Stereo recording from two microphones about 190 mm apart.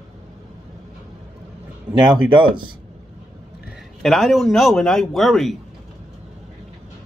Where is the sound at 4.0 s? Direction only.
Centre (ahead or behind).